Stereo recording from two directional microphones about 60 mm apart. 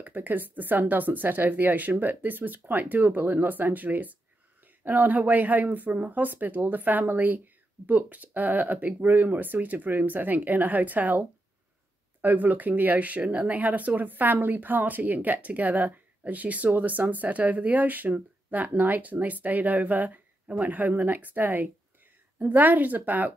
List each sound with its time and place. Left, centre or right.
0.0 s speech: right